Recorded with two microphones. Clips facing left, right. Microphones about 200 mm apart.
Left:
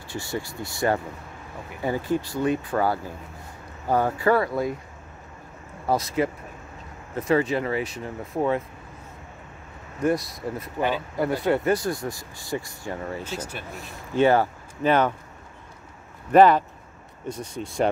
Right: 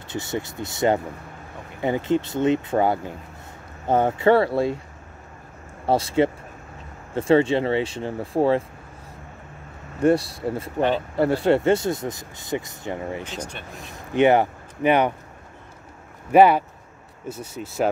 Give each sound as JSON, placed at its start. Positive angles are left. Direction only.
{"t": 0.1, "sound": "speech", "side_deg": -20}
{"t": 5.9, "sound": "speech", "side_deg": -30}
{"t": 9.9, "sound": "speech", "side_deg": -30}
{"t": 13.4, "sound": "speech", "side_deg": 5}
{"t": 14.1, "sound": "speech", "side_deg": -20}
{"t": 16.3, "sound": "speech", "side_deg": -10}